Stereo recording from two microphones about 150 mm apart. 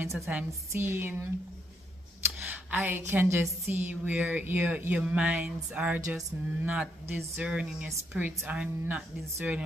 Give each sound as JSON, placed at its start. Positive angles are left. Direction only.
{"t": 0.0, "sound": "music", "side_deg": -20}
{"t": 0.3, "sound": "speech", "side_deg": -5}
{"t": 2.4, "sound": "a sound", "side_deg": -10}
{"t": 3.1, "sound": "speech", "side_deg": -10}